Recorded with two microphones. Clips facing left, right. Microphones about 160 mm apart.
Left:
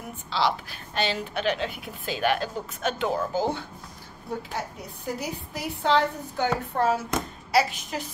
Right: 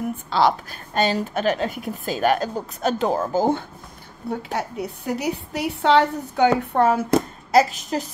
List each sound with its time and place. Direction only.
0.3 s a woman's voice: 45° right (ahead or behind)
4.5 s a woman's voice: 70° right (ahead or behind)
7.1 s a child's voice: 35° right (ahead or behind)